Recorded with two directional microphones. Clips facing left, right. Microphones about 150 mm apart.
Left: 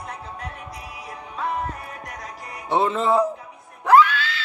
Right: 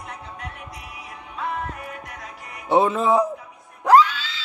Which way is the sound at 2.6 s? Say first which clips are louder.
Right 2 dB; 15° right (ahead or behind).